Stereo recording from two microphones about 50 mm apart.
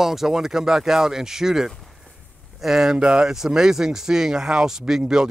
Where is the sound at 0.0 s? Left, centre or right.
Centre.